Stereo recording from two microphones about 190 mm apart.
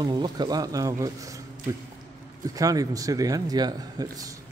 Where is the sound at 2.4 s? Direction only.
20° right (ahead or behind).